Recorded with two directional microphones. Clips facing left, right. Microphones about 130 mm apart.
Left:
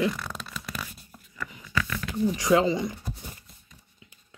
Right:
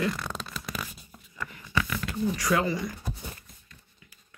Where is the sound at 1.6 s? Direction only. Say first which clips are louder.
Right 1 dB; 20° right (ahead or behind).